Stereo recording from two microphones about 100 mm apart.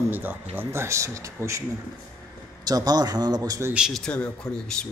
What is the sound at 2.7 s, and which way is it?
Speech, 40° right (ahead or behind).